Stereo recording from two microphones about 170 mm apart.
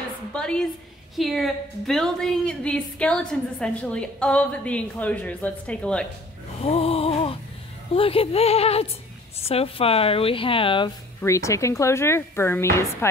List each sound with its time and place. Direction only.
0.3 s a woman's voice: 5° left (ahead or behind)
6.6 s a sound: 35° left (ahead or behind)
7.9 s speech: 35° left (ahead or behind)
11.1 s speech: 15° left (ahead or behind)